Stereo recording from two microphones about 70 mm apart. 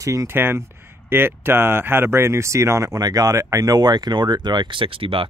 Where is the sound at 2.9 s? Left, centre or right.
Right.